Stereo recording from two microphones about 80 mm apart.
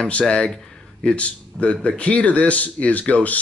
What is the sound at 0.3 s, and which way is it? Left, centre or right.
Speech, centre.